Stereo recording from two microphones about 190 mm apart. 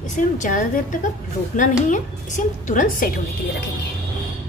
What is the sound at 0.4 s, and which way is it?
Speech, 45° left (ahead or behind).